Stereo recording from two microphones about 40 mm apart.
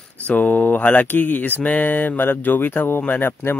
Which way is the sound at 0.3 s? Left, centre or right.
Left.